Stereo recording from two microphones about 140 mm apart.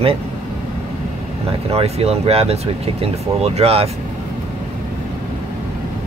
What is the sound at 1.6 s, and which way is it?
Speech, 45° right (ahead or behind).